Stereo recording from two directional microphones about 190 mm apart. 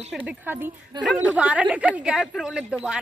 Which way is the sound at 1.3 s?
5° right (ahead or behind).